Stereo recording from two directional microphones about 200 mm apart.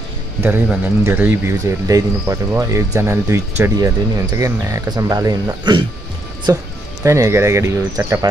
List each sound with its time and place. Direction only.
0.4 s speech: 10° right (ahead or behind)